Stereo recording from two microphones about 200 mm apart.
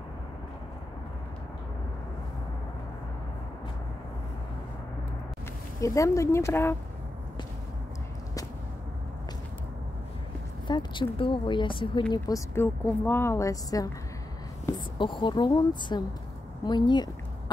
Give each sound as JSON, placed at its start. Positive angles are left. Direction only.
{"t": 5.8, "sound": "speech", "side_deg": 15}
{"t": 10.7, "sound": "speech", "side_deg": 25}